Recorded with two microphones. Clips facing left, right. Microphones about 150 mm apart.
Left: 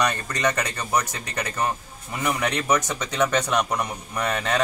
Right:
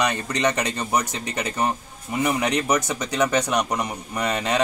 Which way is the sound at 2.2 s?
10° right (ahead or behind).